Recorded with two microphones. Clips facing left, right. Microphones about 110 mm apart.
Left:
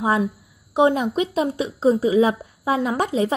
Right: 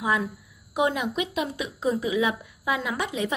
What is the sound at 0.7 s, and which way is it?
A woman's voice, 30° left (ahead or behind).